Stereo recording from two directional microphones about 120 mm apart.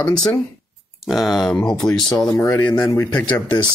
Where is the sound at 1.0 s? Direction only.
Centre (ahead or behind).